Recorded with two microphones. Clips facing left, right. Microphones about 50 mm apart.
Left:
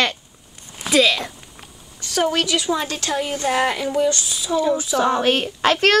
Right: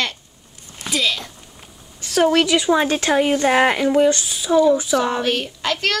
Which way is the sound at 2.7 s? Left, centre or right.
Right.